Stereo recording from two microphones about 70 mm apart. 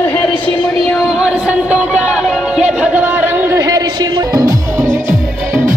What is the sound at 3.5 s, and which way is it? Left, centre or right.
Music, right.